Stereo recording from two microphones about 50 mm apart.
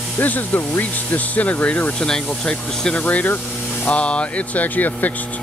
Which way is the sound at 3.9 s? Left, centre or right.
Left.